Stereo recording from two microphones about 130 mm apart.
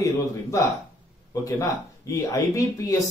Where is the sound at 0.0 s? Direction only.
25° left (ahead or behind).